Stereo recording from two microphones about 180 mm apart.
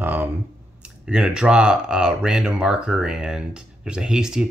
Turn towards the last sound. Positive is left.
turn(degrees=-5)  # may be behind; listen again after turning